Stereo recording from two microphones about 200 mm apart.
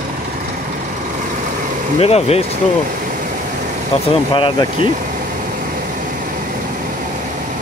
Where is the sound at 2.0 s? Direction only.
30° left (ahead or behind).